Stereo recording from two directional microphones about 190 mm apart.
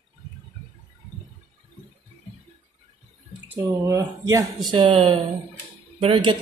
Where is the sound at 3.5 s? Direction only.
15° right (ahead or behind).